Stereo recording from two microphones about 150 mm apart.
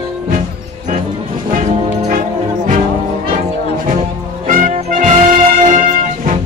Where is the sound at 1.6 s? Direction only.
60° right (ahead or behind).